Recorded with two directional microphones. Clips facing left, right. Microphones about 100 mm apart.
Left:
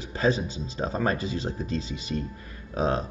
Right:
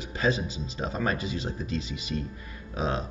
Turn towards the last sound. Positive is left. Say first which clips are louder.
# left 4 dB
turn(degrees=40)  # may be behind; listen again after turning